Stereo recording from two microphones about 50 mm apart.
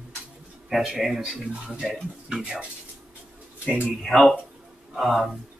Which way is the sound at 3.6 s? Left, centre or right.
Right.